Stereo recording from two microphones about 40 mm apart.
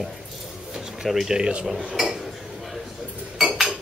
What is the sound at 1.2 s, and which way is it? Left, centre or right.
Speech, centre.